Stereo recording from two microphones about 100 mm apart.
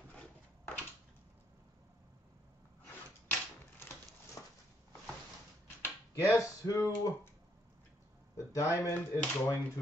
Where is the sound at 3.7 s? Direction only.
25° left (ahead or behind).